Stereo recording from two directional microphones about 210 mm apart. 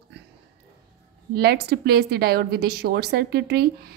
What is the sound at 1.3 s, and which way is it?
A woman's voice, 45° right (ahead or behind).